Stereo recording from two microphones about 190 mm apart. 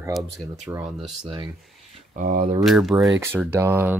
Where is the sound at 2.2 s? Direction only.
45° right (ahead or behind).